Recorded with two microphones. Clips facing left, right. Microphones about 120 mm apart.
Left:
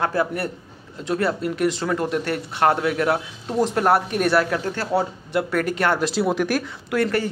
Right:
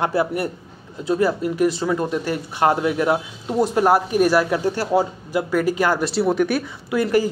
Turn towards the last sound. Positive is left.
turn(degrees=-10)  # may be behind; listen again after turning